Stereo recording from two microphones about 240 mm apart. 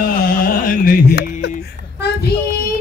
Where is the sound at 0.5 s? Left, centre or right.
Left.